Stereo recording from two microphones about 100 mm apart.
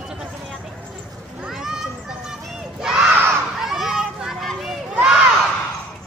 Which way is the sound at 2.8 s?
5° right (ahead or behind).